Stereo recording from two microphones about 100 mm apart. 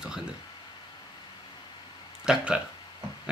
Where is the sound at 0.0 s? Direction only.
10° right (ahead or behind).